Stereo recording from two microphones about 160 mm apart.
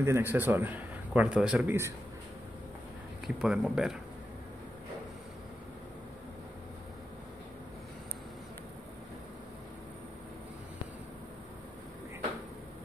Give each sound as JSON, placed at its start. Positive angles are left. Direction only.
{"t": 0.0, "sound": "a man's voice", "side_deg": -15}
{"t": 3.3, "sound": "speech", "side_deg": -5}